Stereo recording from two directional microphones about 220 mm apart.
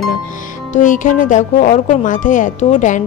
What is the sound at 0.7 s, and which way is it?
Speech, 35° left (ahead or behind).